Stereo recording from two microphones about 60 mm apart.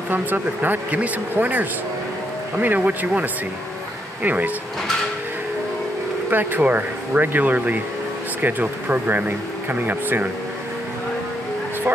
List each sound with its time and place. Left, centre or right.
0.1 s speech: right
6.3 s speech: right